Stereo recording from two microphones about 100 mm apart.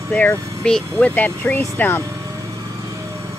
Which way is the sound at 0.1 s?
15° left (ahead or behind).